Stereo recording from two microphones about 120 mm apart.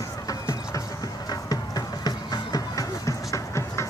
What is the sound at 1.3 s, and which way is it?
Music, 35° left (ahead or behind).